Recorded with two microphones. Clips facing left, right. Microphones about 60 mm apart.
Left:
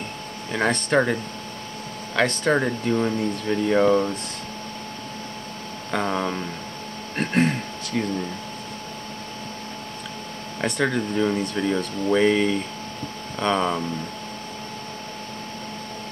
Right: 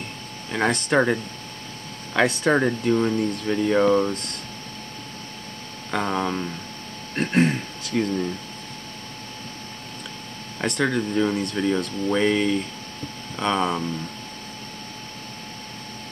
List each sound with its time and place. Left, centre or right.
0.5 s speech: centre
5.9 s speech: centre
10.6 s speech: centre